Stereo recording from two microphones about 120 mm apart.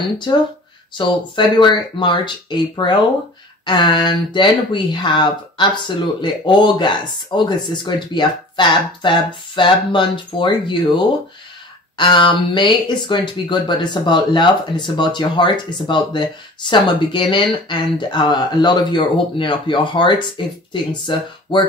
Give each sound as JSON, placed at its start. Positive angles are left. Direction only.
{"t": 0.0, "sound": "speech", "side_deg": 40}